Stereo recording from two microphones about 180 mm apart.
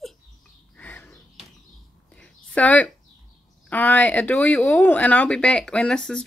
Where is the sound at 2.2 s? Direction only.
10° left (ahead or behind).